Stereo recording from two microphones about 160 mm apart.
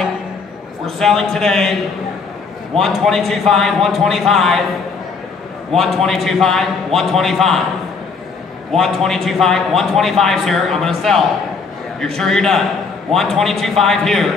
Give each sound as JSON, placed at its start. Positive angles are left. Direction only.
{"t": 0.8, "sound": "a man's voice", "side_deg": 0}
{"t": 2.8, "sound": "a man's voice", "side_deg": 0}
{"t": 5.7, "sound": "a man's voice", "side_deg": 0}
{"t": 8.7, "sound": "a man's voice", "side_deg": 0}